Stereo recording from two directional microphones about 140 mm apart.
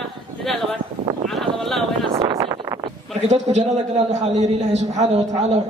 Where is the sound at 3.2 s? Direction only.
55° right (ahead or behind).